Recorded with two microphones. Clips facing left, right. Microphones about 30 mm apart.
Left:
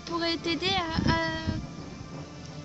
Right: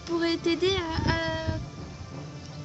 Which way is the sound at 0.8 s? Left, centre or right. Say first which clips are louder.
Left 1 dB; centre.